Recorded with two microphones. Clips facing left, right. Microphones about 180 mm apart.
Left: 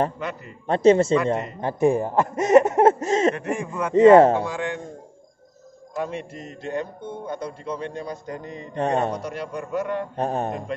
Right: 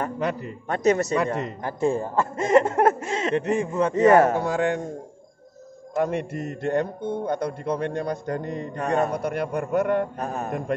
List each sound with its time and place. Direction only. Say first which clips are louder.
0.2 s a man's voice: right 5 dB; 35° right (ahead or behind)
0.7 s speech: left 5 dB; 25° left (ahead or behind)
3.0 s speech: left 6 dB; 40° left (ahead or behind)
3.3 s a man's voice: right 5 dB; 25° right (ahead or behind)
3.9 s speech: left 5 dB; 25° left (ahead or behind)
4.4 s a man's voice: right 4 dB; 45° right (ahead or behind)
5.9 s speech: right 5 dB; 55° right (ahead or behind)
8.7 s speech: left 1 dB; 30° left (ahead or behind)
9.2 s speech: right 5 dB; 55° right (ahead or behind)
10.1 s speech: left 3 dB; 30° left (ahead or behind)